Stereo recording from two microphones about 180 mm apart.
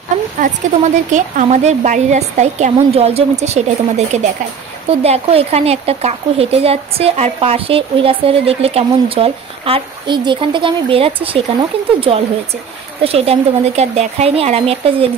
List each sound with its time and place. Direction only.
0.4 s speech: 45° right (ahead or behind)
13.0 s speech: 35° right (ahead or behind)